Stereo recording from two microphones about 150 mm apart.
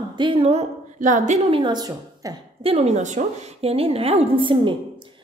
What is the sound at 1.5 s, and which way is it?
Speech, 30° right (ahead or behind).